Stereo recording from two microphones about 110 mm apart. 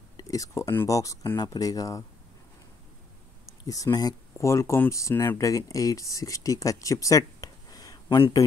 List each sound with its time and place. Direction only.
0.2 s speech: 30° left (ahead or behind)
3.6 s speech: 30° left (ahead or behind)